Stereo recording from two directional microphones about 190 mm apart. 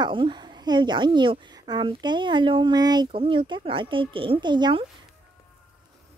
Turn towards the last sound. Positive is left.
turn(degrees=-25)  # may be behind; listen again after turning